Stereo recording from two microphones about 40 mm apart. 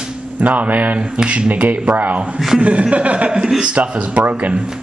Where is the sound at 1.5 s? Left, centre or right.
Right.